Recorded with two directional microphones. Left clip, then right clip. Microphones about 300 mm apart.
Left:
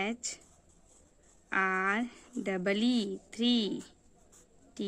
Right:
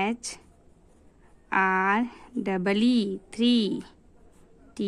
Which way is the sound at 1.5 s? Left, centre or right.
Centre.